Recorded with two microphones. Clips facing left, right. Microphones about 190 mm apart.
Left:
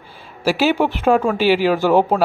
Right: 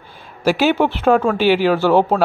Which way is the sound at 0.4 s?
5° left (ahead or behind).